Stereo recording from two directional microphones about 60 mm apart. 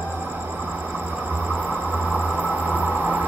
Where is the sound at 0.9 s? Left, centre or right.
Right.